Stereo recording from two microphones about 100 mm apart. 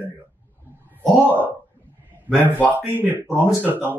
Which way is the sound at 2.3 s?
20° right (ahead or behind).